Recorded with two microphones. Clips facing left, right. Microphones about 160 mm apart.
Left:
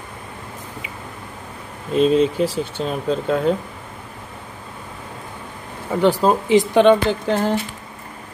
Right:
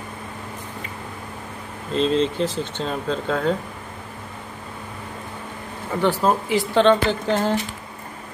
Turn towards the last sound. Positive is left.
turn(degrees=5)  # may be behind; listen again after turning